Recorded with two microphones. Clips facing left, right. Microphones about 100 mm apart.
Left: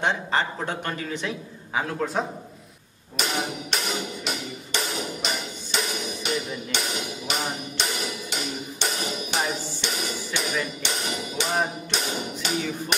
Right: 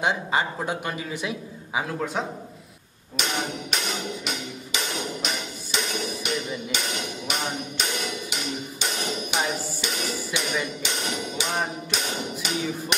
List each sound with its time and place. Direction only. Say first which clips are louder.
0.0 s a man's voice: even; 10° right (ahead or behind)
3.2 s music: left 1 dB; centre (ahead or behind)